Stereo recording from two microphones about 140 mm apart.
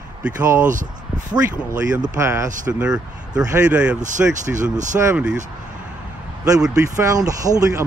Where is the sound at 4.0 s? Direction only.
65° right (ahead or behind).